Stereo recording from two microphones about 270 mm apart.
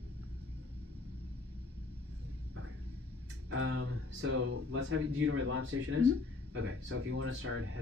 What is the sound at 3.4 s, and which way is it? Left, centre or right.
Speech, right.